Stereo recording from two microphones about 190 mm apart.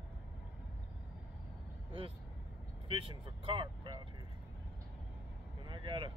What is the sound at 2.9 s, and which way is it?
Speech, 25° right (ahead or behind).